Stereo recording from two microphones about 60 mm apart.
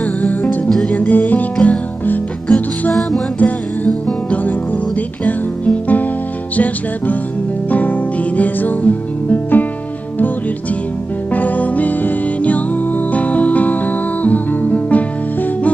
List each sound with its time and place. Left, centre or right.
0.0 s music: left
2.9 s music: centre
3.3 s music: left
11.3 s music: left